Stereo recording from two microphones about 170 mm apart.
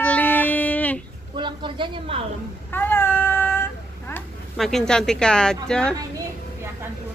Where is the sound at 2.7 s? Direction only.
10° left (ahead or behind).